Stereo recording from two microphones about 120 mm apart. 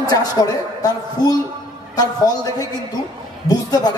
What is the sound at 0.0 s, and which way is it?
A man's voice, 35° left (ahead or behind).